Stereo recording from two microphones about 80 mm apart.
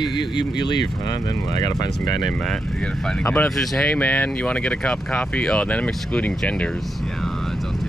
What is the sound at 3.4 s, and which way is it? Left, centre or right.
Speech, centre.